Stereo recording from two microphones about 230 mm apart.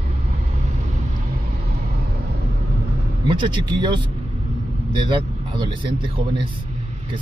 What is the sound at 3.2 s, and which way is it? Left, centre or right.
Speech, centre.